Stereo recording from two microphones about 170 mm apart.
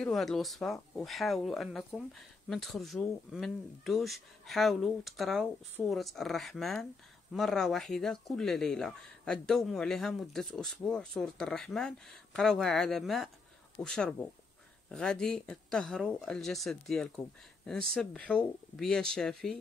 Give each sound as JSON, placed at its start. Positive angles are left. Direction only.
{"t": 0.0, "sound": "speech", "side_deg": 0}